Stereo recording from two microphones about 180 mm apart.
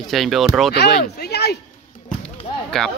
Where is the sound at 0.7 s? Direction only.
65° left (ahead or behind).